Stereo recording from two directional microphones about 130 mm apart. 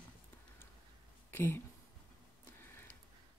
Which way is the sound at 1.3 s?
15° left (ahead or behind).